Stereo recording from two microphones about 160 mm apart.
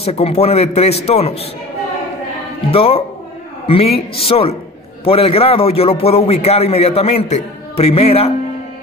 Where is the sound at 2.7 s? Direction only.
35° left (ahead or behind).